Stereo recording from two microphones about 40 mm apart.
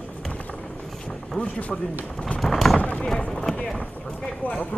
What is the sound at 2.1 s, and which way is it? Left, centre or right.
Speech, left.